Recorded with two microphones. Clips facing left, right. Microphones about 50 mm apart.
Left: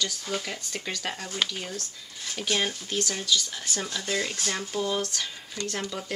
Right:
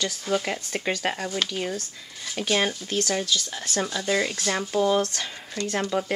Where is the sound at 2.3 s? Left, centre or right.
Centre.